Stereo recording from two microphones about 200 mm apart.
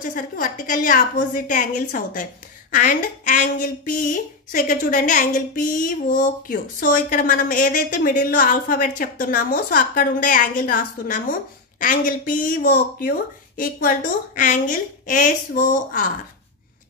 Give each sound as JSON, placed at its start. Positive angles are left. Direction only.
{"t": 0.0, "sound": "a woman's voice", "side_deg": 45}